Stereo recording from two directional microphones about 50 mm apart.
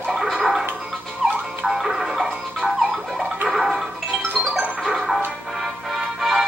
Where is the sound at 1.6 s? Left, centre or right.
Centre.